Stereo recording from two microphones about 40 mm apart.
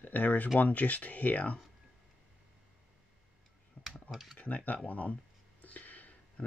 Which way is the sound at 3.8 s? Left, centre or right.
Left.